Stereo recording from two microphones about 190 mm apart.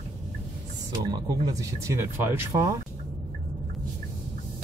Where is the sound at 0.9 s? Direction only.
20° right (ahead or behind).